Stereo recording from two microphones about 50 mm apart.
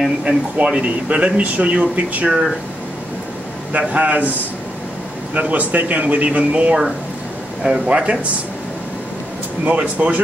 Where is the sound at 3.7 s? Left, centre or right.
Right.